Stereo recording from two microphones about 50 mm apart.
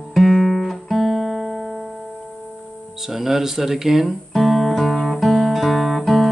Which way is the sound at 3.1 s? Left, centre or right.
Centre.